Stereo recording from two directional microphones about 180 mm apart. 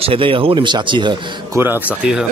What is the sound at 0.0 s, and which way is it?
A man's voice, 30° right (ahead or behind).